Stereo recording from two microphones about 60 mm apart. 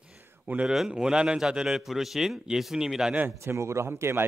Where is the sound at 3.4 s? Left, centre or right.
Right.